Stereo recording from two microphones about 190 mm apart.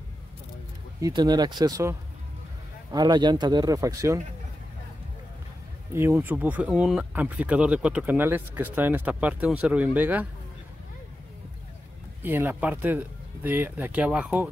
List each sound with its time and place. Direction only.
1.0 s speech: 20° right (ahead or behind)
5.9 s speech: 10° right (ahead or behind)
12.2 s speech: 10° right (ahead or behind)